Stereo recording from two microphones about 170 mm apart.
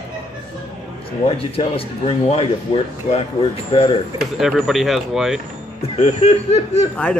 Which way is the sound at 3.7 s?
30° left (ahead or behind).